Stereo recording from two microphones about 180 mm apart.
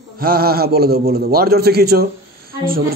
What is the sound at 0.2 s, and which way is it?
A man's voice, 55° right (ahead or behind).